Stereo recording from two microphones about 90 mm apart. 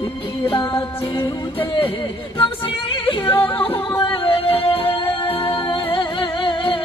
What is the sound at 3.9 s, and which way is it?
Music, 65° left (ahead or behind).